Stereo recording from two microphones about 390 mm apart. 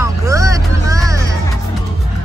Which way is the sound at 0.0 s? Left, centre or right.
Centre.